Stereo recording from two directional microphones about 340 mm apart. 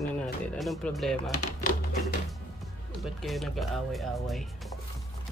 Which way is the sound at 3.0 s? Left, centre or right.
Centre.